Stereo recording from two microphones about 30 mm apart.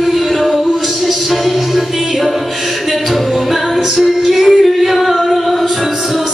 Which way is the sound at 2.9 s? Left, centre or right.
Centre.